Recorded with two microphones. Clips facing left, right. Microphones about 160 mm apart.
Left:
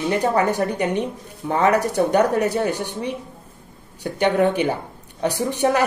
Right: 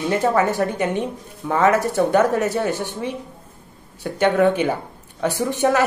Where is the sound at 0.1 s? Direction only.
15° left (ahead or behind).